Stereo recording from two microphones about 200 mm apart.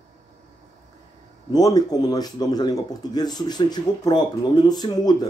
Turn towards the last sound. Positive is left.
turn(degrees=20)  # may be behind; listen again after turning